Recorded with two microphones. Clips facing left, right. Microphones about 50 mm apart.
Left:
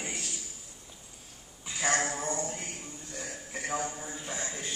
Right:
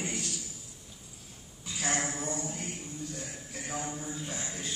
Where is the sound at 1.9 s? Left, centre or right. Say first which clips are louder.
Left 3 dB; left.